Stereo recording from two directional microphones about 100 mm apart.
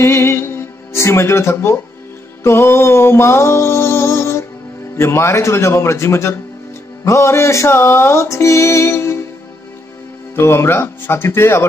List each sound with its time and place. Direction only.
0.0 s music: 25° left (ahead or behind)
10.3 s music: 25° left (ahead or behind)